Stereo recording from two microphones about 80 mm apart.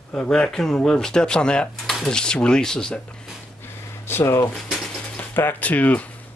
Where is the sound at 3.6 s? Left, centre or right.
Left.